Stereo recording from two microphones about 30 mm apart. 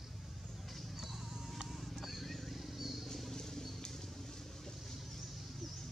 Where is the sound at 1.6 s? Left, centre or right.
Centre.